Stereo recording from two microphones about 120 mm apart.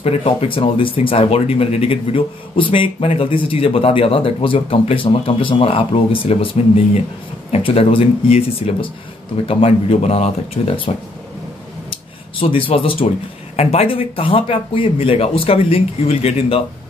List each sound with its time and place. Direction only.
0.0 s speech: 55° left (ahead or behind)
11.9 s a sound: 50° left (ahead or behind)
13.6 s speech: 55° left (ahead or behind)